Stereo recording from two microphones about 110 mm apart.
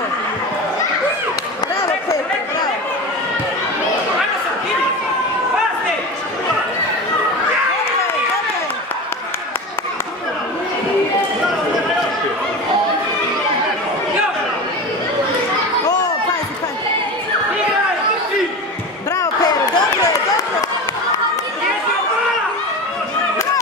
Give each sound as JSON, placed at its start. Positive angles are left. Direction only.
{"t": 19.1, "sound": "basketball bounce", "side_deg": 35}